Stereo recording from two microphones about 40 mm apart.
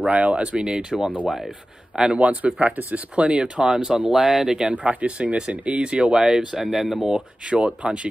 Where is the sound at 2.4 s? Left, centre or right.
Right.